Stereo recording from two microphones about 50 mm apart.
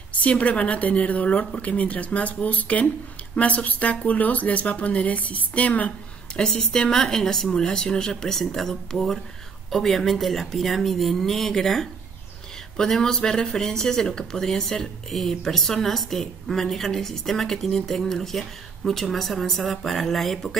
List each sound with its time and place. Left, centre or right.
0.1 s speech: left
6.3 s speech: centre